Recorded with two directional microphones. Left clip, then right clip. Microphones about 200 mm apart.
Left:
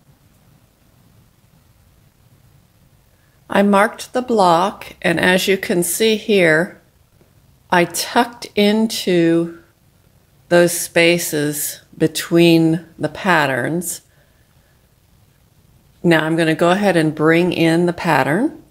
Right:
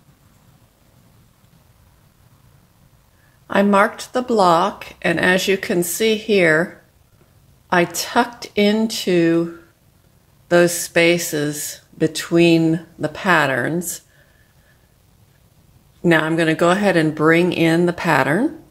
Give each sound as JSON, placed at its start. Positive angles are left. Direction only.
{"t": 3.4, "sound": "speech", "side_deg": 15}
{"t": 7.7, "sound": "speech", "side_deg": 15}
{"t": 10.5, "sound": "speech", "side_deg": 15}
{"t": 16.0, "sound": "speech", "side_deg": 10}